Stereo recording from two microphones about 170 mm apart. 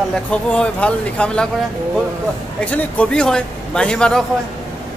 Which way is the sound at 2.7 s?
10° left (ahead or behind).